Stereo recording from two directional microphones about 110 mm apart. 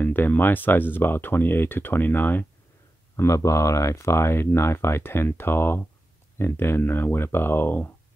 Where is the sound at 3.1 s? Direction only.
30° left (ahead or behind).